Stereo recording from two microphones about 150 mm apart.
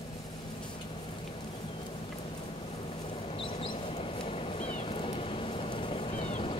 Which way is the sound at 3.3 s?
40° left (ahead or behind).